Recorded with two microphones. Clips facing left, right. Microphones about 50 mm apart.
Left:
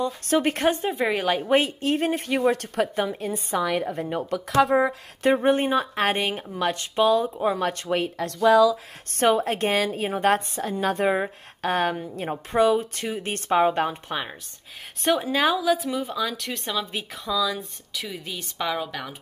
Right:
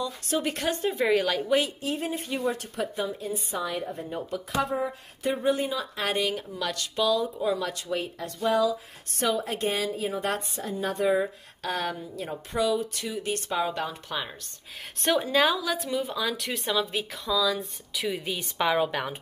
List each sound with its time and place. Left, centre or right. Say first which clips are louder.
0.0 s speech: left 6 dB; left
0.9 s speech: right 1 dB; centre
1.2 s speech: left 4 dB; left
1.9 s a woman's voice: left 7 dB; left
5.4 s a woman's voice: left 5 dB; left
9.2 s a woman's voice: left 6 dB; left
15.0 s a woman's voice: left 1 dB; centre
18.0 s a woman's voice: right 6 dB; centre